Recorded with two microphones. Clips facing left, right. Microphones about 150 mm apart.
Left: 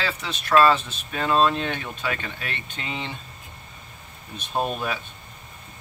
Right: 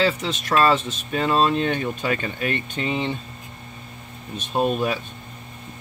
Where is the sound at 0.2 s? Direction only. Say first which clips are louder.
Left 1 dB; 40° right (ahead or behind).